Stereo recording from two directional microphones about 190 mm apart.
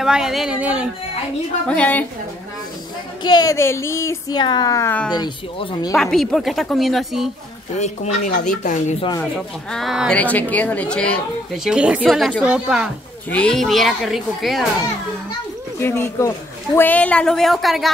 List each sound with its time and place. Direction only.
0.0 s speech: centre (ahead or behind)
1.7 s a woman's voice: 10° left (ahead or behind)
3.3 s a woman's voice: 20° left (ahead or behind)
5.1 s speech: 25° left (ahead or behind)
5.9 s speech: centre (ahead or behind)
7.7 s speech: 40° left (ahead or behind)
9.2 s speech: 5° left (ahead or behind)
15.8 s a woman's voice: 15° left (ahead or behind)